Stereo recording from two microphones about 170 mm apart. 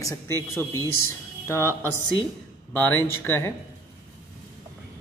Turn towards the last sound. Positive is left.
turn(degrees=15)  # may be behind; listen again after turning